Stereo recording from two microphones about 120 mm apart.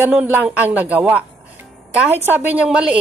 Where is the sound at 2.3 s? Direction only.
15° right (ahead or behind).